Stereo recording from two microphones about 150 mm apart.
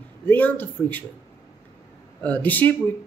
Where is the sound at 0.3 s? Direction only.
10° left (ahead or behind).